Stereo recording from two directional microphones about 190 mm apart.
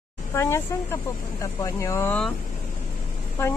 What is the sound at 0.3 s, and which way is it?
Speech, 15° left (ahead or behind).